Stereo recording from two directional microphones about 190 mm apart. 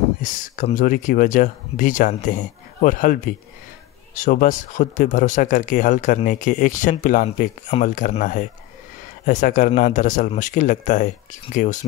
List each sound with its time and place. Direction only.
0.2 s speech: 45° left (ahead or behind)